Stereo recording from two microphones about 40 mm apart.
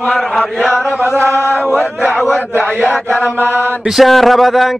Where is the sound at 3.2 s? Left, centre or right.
Left.